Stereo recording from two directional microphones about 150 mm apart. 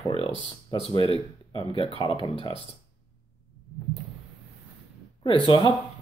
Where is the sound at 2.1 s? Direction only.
35° left (ahead or behind).